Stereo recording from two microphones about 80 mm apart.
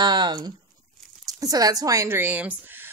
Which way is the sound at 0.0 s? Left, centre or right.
Right.